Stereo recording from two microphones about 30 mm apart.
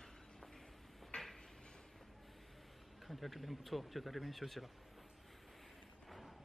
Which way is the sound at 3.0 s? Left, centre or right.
Centre.